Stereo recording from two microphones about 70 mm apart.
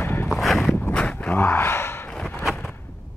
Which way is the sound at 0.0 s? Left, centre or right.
Left.